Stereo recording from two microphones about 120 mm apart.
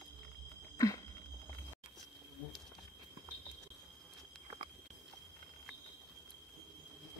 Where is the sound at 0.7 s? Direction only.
30° left (ahead or behind).